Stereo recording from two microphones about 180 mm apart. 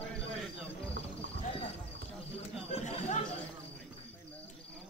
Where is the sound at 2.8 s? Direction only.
40° left (ahead or behind).